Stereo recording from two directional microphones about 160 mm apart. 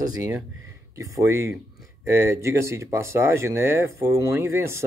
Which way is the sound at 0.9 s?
20° right (ahead or behind).